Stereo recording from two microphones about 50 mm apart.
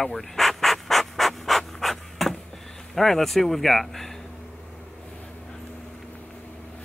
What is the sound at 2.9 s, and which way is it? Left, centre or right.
Speech, centre.